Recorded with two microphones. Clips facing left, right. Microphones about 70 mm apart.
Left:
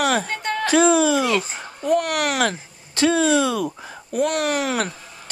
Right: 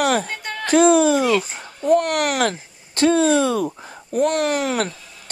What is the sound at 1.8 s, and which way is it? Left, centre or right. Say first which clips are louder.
Speech: right 3 dB; right.